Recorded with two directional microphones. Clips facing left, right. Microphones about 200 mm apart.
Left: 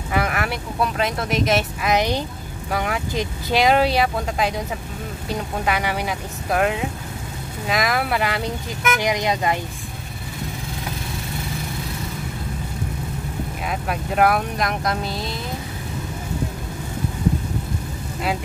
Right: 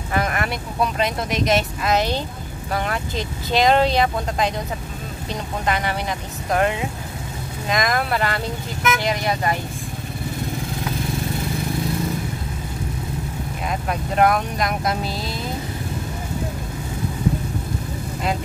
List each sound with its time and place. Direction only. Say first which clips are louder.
0.1 s speech: even; 5° left (ahead or behind)
1.9 s speech: left 1 dB; 15° left (ahead or behind)
13.7 s speech: right 1 dB; 5° left (ahead or behind)